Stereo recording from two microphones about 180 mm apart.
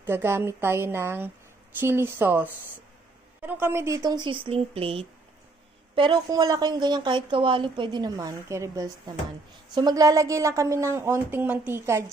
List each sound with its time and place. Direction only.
0.0 s a woman's voice: 15° right (ahead or behind)